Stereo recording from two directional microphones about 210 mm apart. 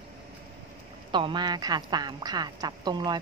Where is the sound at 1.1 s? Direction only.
20° right (ahead or behind).